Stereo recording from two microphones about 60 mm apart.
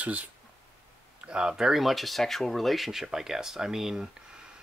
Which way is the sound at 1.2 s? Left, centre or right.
Centre.